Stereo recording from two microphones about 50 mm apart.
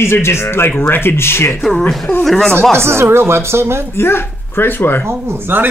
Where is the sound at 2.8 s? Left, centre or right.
Right.